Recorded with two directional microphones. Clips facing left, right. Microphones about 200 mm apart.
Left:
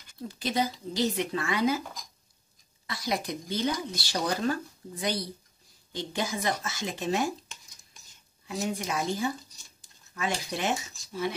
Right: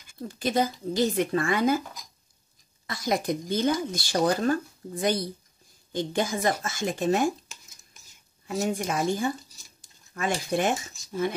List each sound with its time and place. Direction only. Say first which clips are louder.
0.4 s speech: right 4 dB; 50° right (ahead or behind)
2.9 s speech: right 5 dB; 45° right (ahead or behind)
7.4 s a sound: even; 5° right (ahead or behind)
8.6 s speech: right 4 dB; 50° right (ahead or behind)